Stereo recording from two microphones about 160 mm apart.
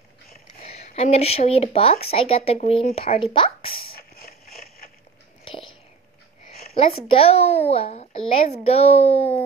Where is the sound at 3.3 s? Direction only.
35° left (ahead or behind).